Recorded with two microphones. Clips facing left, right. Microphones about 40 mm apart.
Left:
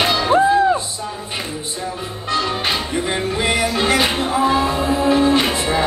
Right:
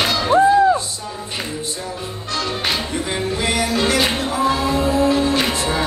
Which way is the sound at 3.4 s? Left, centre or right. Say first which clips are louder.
Left 1 dB; left.